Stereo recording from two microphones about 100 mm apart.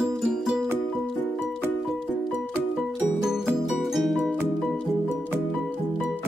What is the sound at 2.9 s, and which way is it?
Music, 5° right (ahead or behind).